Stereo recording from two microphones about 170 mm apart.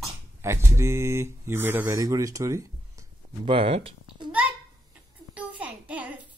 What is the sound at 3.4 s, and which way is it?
Speech, 35° right (ahead or behind).